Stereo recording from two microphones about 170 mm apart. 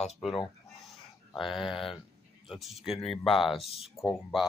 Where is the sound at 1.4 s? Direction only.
Centre (ahead or behind).